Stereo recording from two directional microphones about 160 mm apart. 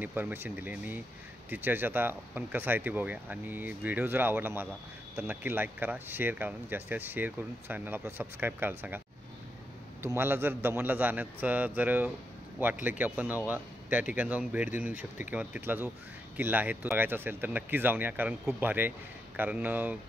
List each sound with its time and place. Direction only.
0.0 s speech: 10° right (ahead or behind)
10.0 s speech: 15° right (ahead or behind)